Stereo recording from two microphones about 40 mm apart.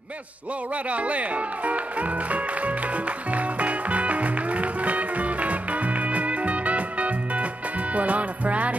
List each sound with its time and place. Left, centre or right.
0.8 s music: right